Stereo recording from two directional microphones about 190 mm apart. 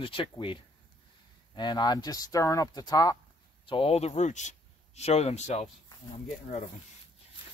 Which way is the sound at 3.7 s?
30° left (ahead or behind).